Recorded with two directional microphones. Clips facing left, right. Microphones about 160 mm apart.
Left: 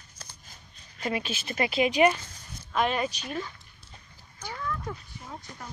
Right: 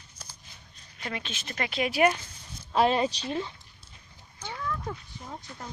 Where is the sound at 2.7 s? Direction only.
30° right (ahead or behind).